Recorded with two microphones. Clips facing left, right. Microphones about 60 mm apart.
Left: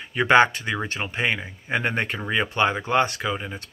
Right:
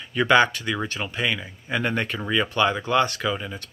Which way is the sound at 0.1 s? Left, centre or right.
Left.